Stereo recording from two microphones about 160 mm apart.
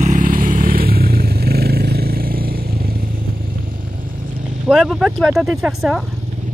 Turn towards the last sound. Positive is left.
turn(degrees=0)  # may be behind; listen again after turning